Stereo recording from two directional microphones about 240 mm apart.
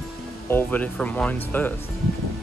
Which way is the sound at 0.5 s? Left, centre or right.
Centre.